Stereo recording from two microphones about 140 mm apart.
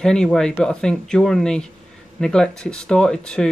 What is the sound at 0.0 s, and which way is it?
Speech, 5° left (ahead or behind).